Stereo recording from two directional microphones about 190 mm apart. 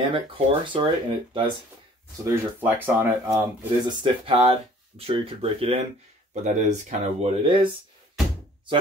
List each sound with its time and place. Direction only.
0.1 s speech: 25° right (ahead or behind)
2.2 s speech: 10° right (ahead or behind); by 7.6 s 30° right (ahead or behind)